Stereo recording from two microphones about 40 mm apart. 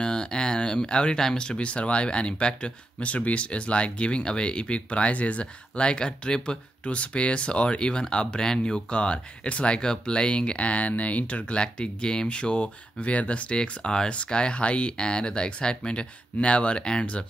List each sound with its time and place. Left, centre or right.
0.0 s a sound: centre
1.2 s speech: centre
1.6 s speech: left